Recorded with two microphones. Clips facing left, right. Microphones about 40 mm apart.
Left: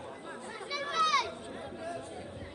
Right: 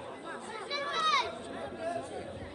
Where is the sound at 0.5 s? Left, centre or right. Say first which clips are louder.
Left 3 dB; right.